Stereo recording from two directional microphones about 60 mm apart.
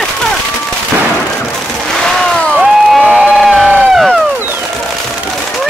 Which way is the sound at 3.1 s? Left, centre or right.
Centre.